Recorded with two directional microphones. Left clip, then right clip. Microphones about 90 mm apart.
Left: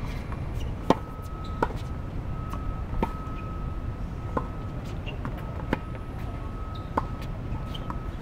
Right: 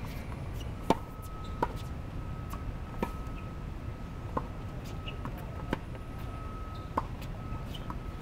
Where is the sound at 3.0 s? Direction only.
25° right (ahead or behind).